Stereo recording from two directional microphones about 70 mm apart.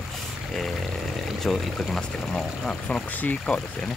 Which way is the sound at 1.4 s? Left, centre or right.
Centre.